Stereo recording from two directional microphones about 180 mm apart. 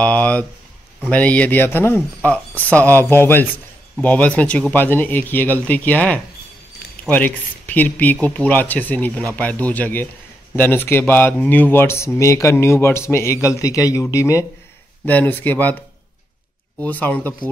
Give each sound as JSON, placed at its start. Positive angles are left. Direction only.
{"t": 0.0, "sound": "speech", "side_deg": 10}
{"t": 16.8, "sound": "speech", "side_deg": 10}